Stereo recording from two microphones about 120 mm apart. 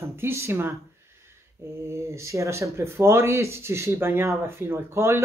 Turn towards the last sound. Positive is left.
turn(degrees=-20)  # may be behind; listen again after turning